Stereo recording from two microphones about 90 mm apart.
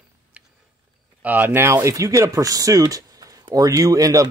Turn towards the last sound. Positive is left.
turn(degrees=-40)  # may be behind; listen again after turning